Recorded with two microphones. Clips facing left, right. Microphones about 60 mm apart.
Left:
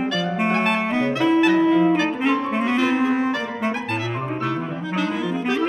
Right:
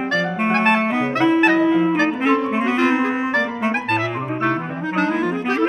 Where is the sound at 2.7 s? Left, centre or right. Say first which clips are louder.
Right 1 dB; right.